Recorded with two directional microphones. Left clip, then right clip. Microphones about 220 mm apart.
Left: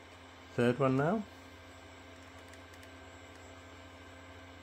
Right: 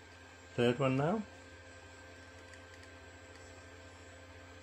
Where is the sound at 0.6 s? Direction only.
25° left (ahead or behind).